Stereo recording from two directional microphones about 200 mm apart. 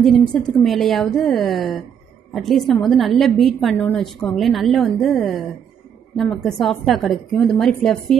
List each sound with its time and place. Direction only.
0.0 s a woman's voice: centre (ahead or behind)